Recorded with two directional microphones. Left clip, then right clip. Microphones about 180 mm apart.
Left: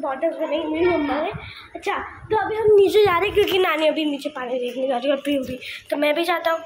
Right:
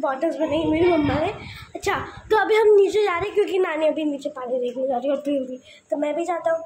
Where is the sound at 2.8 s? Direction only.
20° left (ahead or behind).